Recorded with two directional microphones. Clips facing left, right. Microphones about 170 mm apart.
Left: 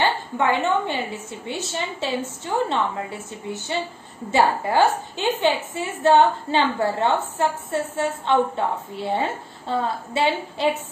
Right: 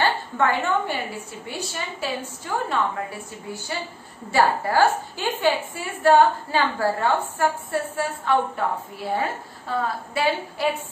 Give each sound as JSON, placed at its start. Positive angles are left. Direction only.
{"t": 0.0, "sound": "a woman's voice", "side_deg": 15}